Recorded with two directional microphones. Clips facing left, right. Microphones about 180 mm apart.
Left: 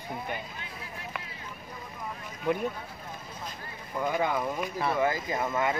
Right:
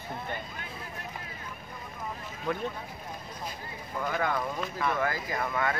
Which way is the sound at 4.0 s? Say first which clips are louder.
Left 2 dB; 15° left (ahead or behind).